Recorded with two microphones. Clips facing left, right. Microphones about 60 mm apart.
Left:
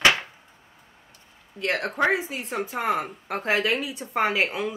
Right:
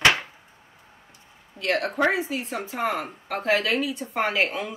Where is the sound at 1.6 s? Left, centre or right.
Left.